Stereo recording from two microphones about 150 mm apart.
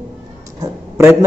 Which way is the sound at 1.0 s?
20° right (ahead or behind).